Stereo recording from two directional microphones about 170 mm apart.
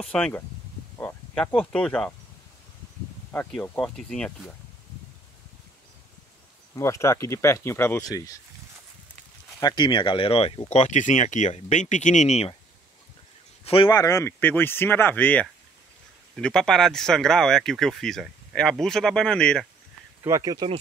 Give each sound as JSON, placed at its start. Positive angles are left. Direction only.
{"t": 0.0, "sound": "speech", "side_deg": 5}
{"t": 3.3, "sound": "speech", "side_deg": 10}
{"t": 6.7, "sound": "speech", "side_deg": 15}
{"t": 9.6, "sound": "speech", "side_deg": 25}
{"t": 13.8, "sound": "speech", "side_deg": 20}
{"t": 20.2, "sound": "speech", "side_deg": -20}